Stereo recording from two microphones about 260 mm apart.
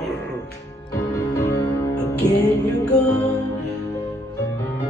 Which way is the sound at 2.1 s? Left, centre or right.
Left.